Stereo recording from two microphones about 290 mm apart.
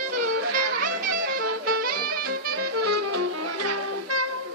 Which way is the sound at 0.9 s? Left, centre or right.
Right.